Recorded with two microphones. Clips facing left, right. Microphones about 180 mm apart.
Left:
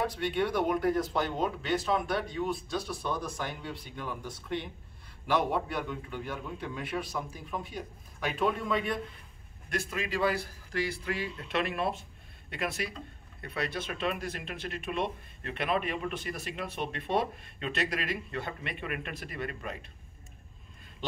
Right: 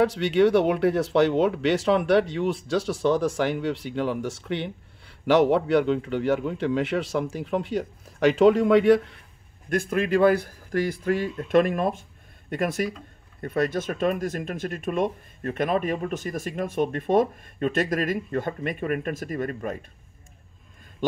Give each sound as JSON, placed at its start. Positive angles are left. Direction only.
{"t": 0.0, "sound": "speech", "side_deg": -80}
{"t": 9.7, "sound": "speech", "side_deg": -50}